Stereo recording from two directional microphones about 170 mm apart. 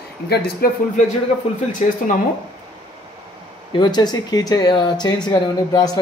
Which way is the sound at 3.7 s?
25° left (ahead or behind).